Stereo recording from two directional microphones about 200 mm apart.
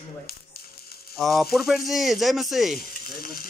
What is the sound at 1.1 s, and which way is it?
Speech, centre (ahead or behind).